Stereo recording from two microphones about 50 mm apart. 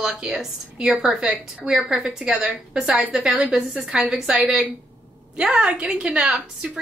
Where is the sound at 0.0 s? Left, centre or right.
Centre.